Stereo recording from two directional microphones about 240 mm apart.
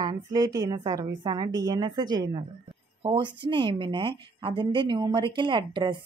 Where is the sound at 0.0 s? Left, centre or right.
Centre.